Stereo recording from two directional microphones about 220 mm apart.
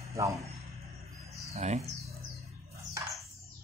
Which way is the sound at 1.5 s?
30° right (ahead or behind).